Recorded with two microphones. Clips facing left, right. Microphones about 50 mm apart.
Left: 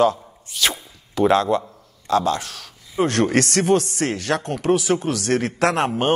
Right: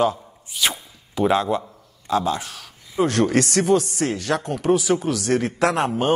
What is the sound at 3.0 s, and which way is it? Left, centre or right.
Speech, left.